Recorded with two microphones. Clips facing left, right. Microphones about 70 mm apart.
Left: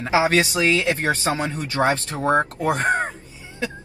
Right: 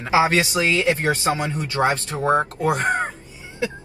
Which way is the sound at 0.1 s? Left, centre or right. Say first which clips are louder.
Right 1 dB; right.